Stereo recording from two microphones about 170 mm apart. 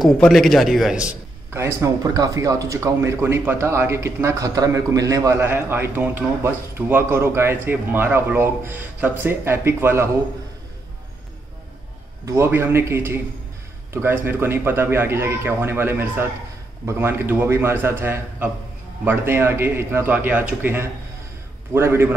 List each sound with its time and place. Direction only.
0.0 s a man's voice: centre (ahead or behind); by 10.0 s 15° right (ahead or behind)
12.3 s a man's voice: 15° right (ahead or behind)